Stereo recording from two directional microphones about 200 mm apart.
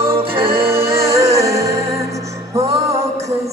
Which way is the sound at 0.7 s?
15° right (ahead or behind).